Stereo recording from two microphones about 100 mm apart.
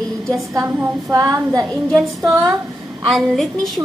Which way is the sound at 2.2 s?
30° right (ahead or behind).